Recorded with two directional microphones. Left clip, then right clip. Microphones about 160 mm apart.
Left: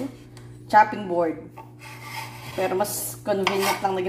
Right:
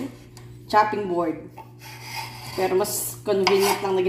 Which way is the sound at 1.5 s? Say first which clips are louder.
Even; centre (ahead or behind).